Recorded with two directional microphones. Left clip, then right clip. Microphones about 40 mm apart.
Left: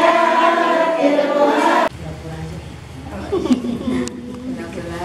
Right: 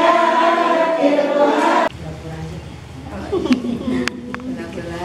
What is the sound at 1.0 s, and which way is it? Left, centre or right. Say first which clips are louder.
Music: even; centre.